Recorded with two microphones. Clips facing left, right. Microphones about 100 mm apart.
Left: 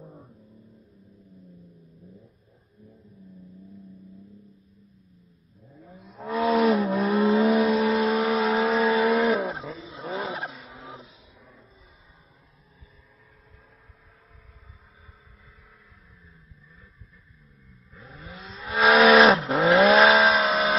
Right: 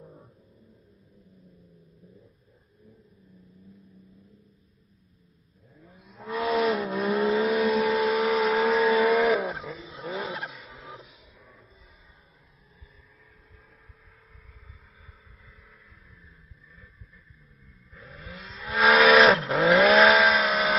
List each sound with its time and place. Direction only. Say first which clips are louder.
1.4 s vehicle: left 5 dB; centre (ahead or behind)
2.9 s vehicle: left 6 dB; 35° left (ahead or behind)
6.1 s vehicle: left 3 dB; 30° left (ahead or behind)
18.3 s vehicle: left 1 dB; 20° left (ahead or behind)